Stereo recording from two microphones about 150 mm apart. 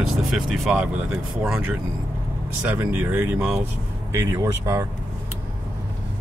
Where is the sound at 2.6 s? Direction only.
10° right (ahead or behind).